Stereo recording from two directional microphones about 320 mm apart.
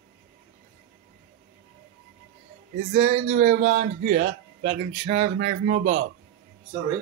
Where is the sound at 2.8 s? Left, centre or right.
Right.